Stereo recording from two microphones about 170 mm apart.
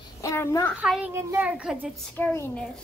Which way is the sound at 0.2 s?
20° left (ahead or behind).